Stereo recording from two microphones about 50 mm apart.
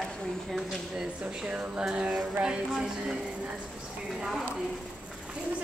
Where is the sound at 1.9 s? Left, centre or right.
Centre.